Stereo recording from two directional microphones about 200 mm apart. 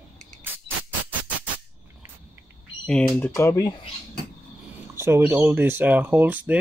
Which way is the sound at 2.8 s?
5° left (ahead or behind).